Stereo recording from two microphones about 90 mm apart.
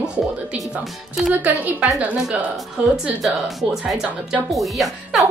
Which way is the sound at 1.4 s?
20° right (ahead or behind).